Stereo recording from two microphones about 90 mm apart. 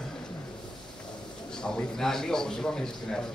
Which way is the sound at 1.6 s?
5° left (ahead or behind).